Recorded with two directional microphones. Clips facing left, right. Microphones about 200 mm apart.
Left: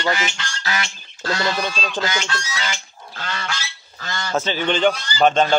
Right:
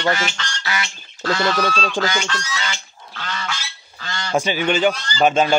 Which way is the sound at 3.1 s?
40° left (ahead or behind).